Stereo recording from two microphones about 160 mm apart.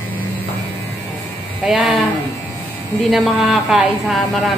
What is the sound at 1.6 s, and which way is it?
Speech, 5° right (ahead or behind).